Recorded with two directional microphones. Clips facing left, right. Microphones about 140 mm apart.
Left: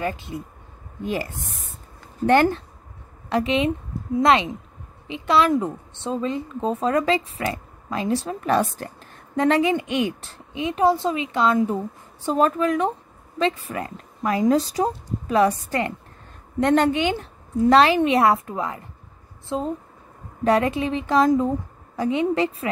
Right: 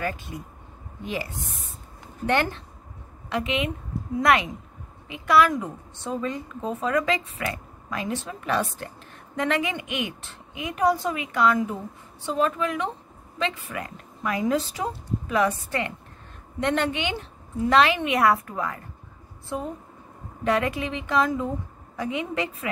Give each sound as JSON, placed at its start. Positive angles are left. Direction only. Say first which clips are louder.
{"t": 0.0, "sound": "speech", "louder": "left 3 dB", "side_deg": 20}
{"t": 1.0, "sound": "a woman's voice", "louder": "left 4 dB", "side_deg": 45}
{"t": 12.3, "sound": "a woman's voice", "louder": "left 5 dB", "side_deg": 40}
{"t": 20.4, "sound": "a woman's voice", "louder": "left 5 dB", "side_deg": 35}